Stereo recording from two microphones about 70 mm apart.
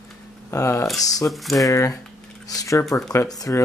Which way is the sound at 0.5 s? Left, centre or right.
Left.